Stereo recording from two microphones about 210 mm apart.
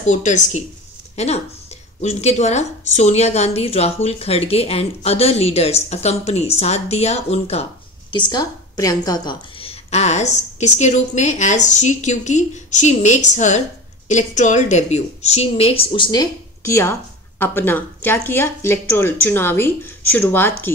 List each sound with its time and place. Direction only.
0.0 s a woman's voice: 35° left (ahead or behind); by 20.7 s 10° left (ahead or behind)